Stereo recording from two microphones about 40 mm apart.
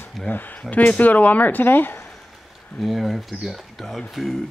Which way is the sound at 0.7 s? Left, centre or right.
Left.